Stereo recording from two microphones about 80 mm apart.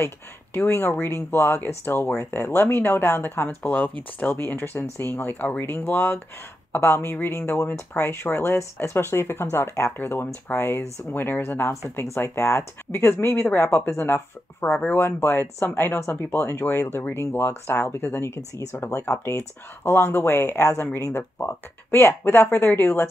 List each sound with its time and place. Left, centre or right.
0.0 s speech: left